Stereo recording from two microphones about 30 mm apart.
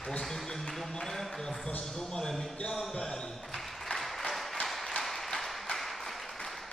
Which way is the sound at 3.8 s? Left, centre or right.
Centre.